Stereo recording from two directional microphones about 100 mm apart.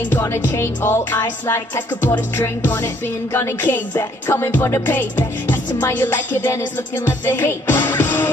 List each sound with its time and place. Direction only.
0.1 s music: 25° left (ahead or behind)